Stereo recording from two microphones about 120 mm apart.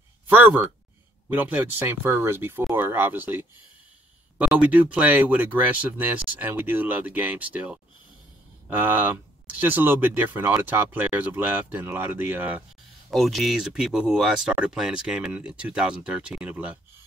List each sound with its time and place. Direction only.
0.3 s speech: 15° right (ahead or behind)
13.1 s speech: centre (ahead or behind)